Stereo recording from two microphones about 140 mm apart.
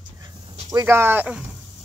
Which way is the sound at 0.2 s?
30° right (ahead or behind).